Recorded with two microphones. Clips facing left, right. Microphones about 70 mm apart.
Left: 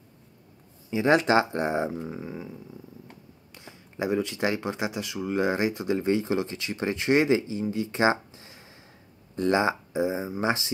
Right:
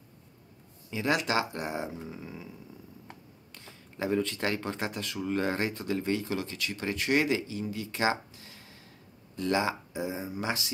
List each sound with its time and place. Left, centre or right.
0.8 s speech: centre
3.5 s speech: centre